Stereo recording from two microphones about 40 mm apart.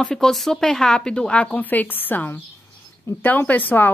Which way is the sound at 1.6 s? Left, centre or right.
Left.